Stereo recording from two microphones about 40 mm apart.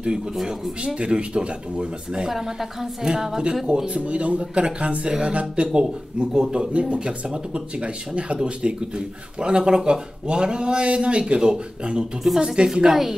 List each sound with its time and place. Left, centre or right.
0.5 s speech: right
2.2 s a woman's voice: centre
3.6 s speech: right
12.8 s a woman's voice: centre